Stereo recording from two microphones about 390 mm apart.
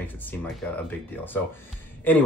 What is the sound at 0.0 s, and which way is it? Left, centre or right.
Speech, centre.